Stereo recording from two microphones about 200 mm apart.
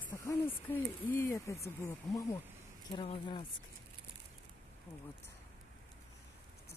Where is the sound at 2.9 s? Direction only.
25° left (ahead or behind).